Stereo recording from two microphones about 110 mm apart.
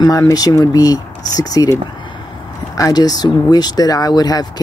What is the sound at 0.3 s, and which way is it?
Speech, 35° left (ahead or behind).